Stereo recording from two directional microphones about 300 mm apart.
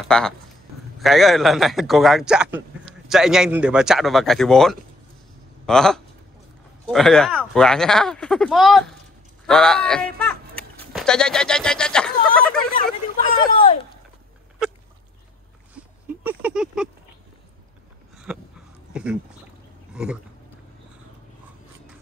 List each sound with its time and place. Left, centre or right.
0.1 s speech: centre
12.7 s speech: centre
16.3 s speech: centre
18.1 s a sound: centre